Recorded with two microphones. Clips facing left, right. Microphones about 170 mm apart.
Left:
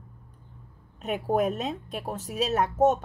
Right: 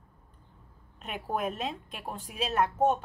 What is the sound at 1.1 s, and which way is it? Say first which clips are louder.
A woman's voice: left 7 dB; 45° left (ahead or behind).